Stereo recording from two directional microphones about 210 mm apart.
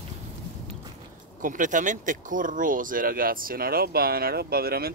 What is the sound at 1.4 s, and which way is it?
Speech, 40° right (ahead or behind).